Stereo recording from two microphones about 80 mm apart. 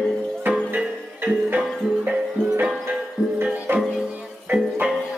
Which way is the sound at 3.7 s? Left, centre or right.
Right.